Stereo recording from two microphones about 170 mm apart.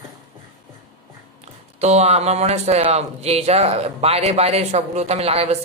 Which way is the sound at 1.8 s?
40° right (ahead or behind).